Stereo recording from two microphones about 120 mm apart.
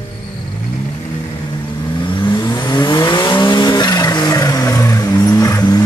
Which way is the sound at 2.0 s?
40° left (ahead or behind).